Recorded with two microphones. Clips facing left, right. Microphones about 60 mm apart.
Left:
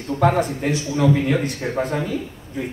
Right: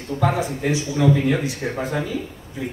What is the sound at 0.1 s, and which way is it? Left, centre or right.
Speech, left.